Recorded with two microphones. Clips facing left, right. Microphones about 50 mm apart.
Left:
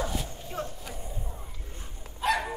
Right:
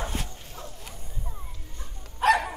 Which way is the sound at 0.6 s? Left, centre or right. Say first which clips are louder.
Left 7 dB; left.